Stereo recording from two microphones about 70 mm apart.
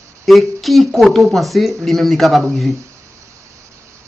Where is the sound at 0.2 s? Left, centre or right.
Centre.